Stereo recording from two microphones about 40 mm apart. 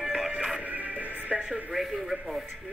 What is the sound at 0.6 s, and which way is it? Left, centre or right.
Music, right.